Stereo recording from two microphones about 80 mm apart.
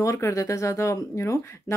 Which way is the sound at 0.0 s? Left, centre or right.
Left.